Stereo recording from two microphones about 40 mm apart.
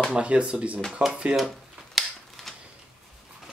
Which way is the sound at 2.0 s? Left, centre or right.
Centre.